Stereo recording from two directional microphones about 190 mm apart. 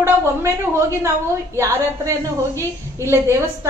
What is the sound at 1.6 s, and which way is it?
A woman's voice, 15° right (ahead or behind).